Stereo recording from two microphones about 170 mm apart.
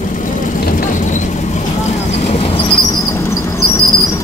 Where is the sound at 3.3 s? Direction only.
20° left (ahead or behind).